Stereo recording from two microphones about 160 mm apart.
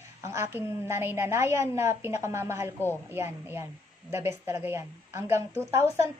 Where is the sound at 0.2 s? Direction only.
15° right (ahead or behind).